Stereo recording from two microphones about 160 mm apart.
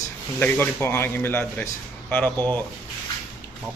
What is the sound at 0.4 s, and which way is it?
A man's voice, 15° left (ahead or behind).